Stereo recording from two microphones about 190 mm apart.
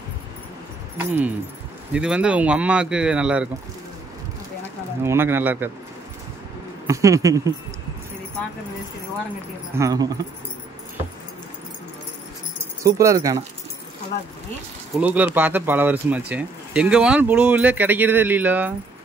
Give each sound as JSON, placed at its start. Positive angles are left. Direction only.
{"t": 0.9, "sound": "speech", "side_deg": -10}
{"t": 5.0, "sound": "speech", "side_deg": -10}
{"t": 6.9, "sound": "speech", "side_deg": -15}
{"t": 9.8, "sound": "speech", "side_deg": -20}
{"t": 12.8, "sound": "speech", "side_deg": -15}
{"t": 15.0, "sound": "speech", "side_deg": -10}